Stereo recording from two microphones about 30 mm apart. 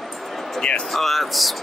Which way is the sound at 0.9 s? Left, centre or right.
Centre.